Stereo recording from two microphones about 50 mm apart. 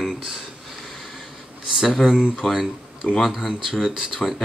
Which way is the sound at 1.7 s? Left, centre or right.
Centre.